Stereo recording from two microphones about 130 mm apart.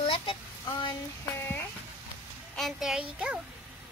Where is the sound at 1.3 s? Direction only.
20° left (ahead or behind).